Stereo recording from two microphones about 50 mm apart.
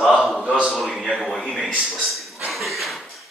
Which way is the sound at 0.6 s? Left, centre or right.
Centre.